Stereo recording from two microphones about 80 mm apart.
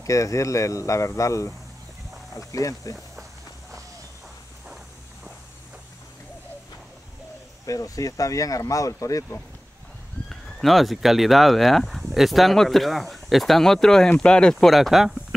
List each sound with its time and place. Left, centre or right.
0.0 s speech: left
7.6 s speech: left
10.3 s speech: centre